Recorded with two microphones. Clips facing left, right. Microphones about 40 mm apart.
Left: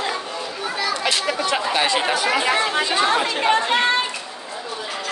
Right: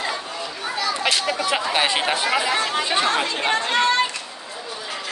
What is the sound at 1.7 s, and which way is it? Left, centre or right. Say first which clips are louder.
Speech: left 1 dB; centre.